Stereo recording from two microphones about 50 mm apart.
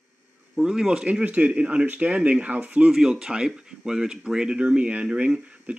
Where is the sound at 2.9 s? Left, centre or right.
Centre.